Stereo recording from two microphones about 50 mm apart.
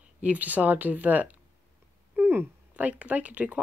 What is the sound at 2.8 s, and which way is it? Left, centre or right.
Speech, right.